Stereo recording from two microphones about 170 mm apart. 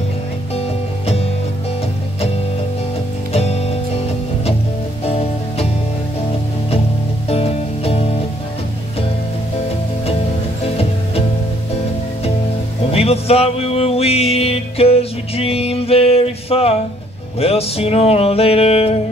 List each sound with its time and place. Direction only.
3.3 s music: 35° left (ahead or behind)
5.0 s music: 35° left (ahead or behind)
7.2 s music: 35° left (ahead or behind)
12.9 s music: 35° left (ahead or behind)